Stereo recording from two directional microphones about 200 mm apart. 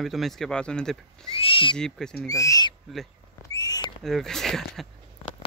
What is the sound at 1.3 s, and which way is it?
Speech, 25° left (ahead or behind).